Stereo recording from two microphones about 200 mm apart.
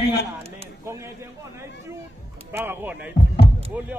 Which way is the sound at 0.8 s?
15° right (ahead or behind).